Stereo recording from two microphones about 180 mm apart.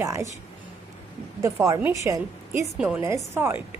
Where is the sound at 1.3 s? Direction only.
15° right (ahead or behind).